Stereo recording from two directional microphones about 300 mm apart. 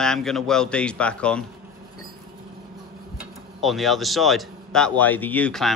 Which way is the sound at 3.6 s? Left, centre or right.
Centre.